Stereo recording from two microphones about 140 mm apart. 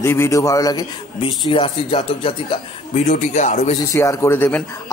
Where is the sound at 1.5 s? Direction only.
40° left (ahead or behind).